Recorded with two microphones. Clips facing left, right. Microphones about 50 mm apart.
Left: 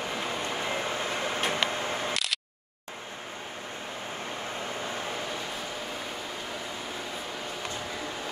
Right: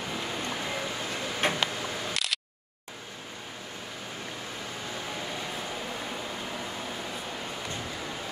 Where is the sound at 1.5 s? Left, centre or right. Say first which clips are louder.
Left 2 dB; left.